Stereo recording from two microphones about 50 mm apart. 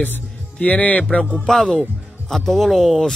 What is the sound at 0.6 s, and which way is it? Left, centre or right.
Speech, left.